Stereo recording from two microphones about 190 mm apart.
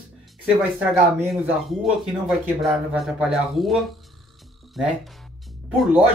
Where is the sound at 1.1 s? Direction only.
5° right (ahead or behind).